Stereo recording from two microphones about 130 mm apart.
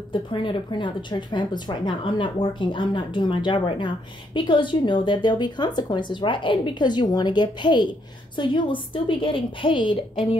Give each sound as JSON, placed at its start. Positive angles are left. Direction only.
{"t": 0.1, "sound": "speech", "side_deg": 40}